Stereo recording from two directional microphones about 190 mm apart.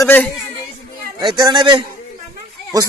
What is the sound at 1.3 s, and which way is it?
Speech, 25° right (ahead or behind).